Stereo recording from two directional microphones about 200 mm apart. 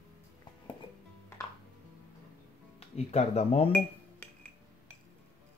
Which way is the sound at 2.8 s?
30° left (ahead or behind).